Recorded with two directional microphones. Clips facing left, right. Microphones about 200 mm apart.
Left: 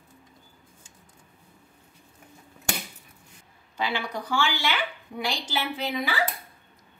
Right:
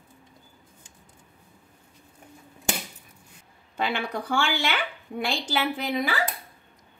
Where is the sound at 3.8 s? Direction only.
55° right (ahead or behind).